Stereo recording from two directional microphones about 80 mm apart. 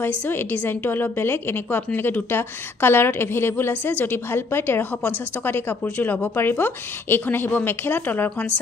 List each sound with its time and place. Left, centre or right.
0.0 s a woman's voice: left